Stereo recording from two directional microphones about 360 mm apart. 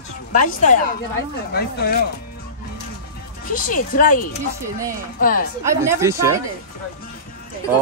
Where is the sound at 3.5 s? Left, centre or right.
Left.